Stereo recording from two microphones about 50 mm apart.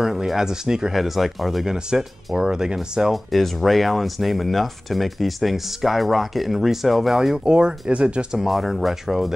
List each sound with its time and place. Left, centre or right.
0.0 s speech: centre
1.9 s speech: centre
3.3 s speech: centre
7.4 s speech: centre
8.4 s speech: centre